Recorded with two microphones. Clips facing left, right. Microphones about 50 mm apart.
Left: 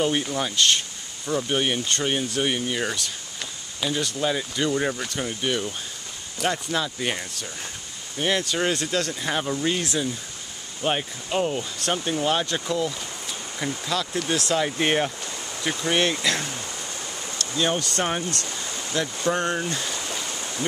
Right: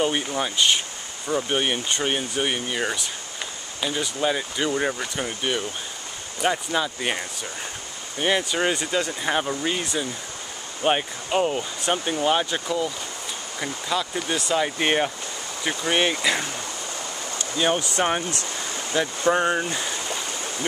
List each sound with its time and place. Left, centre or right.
0.0 s speech: centre